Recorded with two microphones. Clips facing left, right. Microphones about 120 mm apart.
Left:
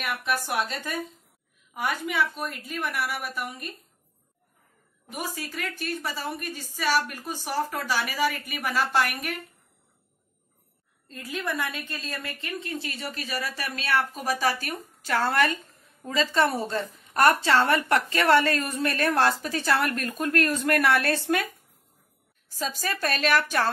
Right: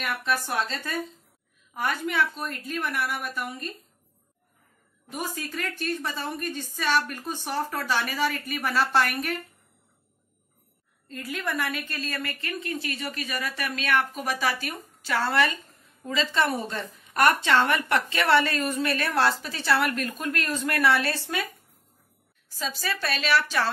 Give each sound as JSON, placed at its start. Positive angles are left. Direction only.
{"t": 0.0, "sound": "a woman's voice", "side_deg": 15}
{"t": 5.1, "sound": "a woman's voice", "side_deg": 10}
{"t": 11.1, "sound": "a woman's voice", "side_deg": 20}
{"t": 12.6, "sound": "a woman's voice", "side_deg": 30}
{"t": 22.5, "sound": "a woman's voice", "side_deg": 45}